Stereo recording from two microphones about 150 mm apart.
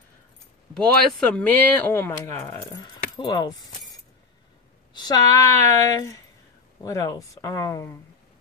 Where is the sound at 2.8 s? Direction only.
30° left (ahead or behind).